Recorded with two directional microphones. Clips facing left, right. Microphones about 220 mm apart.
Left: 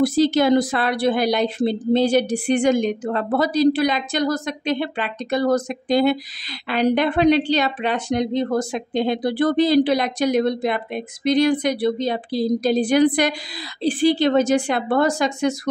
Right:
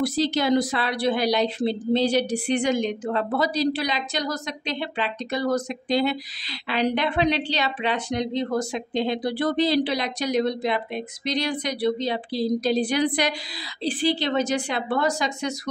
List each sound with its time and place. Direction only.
0.0 s speech: 50° left (ahead or behind)